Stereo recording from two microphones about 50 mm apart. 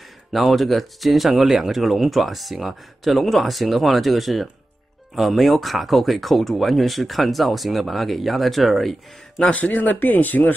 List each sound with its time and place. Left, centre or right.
0.3 s speech: centre
9.4 s speech: left